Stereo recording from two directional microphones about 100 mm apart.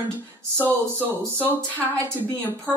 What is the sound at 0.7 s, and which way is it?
Speech, 20° right (ahead or behind).